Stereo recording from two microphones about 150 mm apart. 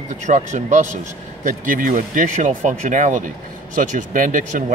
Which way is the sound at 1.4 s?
65° right (ahead or behind).